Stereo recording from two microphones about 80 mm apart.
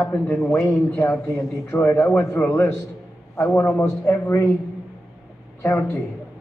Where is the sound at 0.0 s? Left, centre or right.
Left.